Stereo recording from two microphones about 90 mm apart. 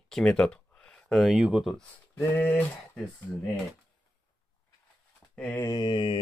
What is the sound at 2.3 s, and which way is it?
Speech, 20° left (ahead or behind).